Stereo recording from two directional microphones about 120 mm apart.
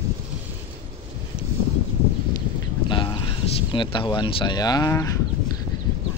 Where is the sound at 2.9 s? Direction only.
40° left (ahead or behind).